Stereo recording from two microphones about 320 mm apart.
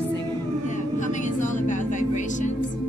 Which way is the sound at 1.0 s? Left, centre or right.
Left.